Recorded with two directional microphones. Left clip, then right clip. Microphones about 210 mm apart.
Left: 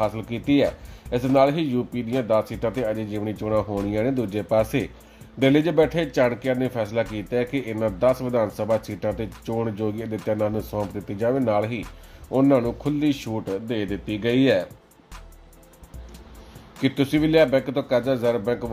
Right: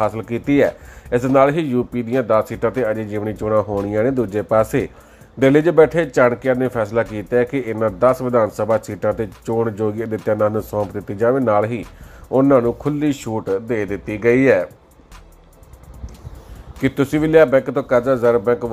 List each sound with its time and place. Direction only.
0.0 s a man's voice: 15° right (ahead or behind)
13.5 s speech: centre (ahead or behind)
16.8 s a man's voice: 15° right (ahead or behind)